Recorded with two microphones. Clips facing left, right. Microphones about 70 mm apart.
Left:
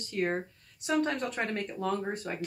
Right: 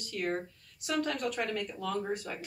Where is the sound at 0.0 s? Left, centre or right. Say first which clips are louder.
Left 3 dB; left.